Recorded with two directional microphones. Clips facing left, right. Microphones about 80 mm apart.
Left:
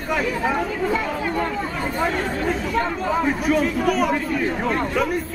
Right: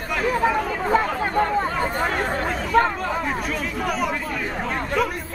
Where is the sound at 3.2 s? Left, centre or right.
Centre.